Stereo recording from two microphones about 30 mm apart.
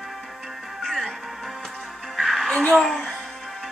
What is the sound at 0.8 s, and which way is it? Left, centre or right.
Music, centre.